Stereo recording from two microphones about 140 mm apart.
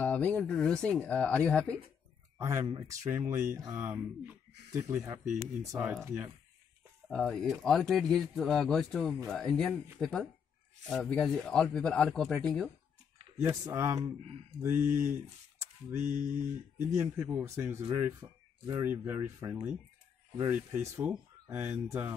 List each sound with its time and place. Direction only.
0.0 s speech: 10° left (ahead or behind)
2.3 s speech: 20° right (ahead or behind)
7.1 s speech: 5° left (ahead or behind)
13.4 s speech: 20° right (ahead or behind)
16.0 s mantra: 60° right (ahead or behind)
16.9 s speech: 20° right (ahead or behind)
17.9 s speech: 30° right (ahead or behind)